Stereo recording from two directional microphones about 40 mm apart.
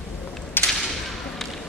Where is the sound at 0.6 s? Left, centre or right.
Left.